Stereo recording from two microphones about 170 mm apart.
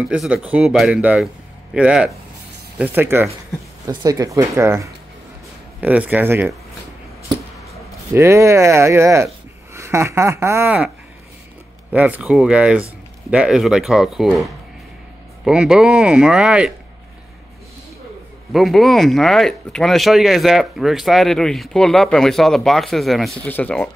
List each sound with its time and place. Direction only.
0.1 s speech: 5° right (ahead or behind)
8.1 s speech: 15° right (ahead or behind)
11.9 s speech: 10° right (ahead or behind)
18.5 s speech: centre (ahead or behind)